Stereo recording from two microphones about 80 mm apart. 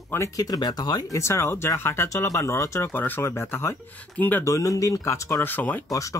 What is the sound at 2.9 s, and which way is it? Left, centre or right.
Speech, left.